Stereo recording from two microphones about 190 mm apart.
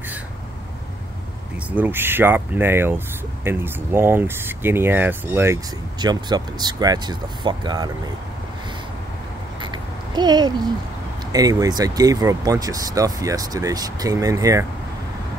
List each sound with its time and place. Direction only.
1.7 s speech: 10° right (ahead or behind)
9.6 s a sound: 25° right (ahead or behind)
11.3 s speech: 20° right (ahead or behind)